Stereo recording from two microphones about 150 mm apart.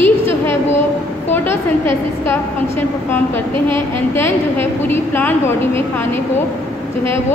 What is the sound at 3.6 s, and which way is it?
Speech, 35° right (ahead or behind).